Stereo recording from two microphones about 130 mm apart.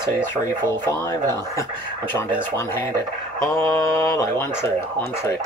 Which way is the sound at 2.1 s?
20° left (ahead or behind).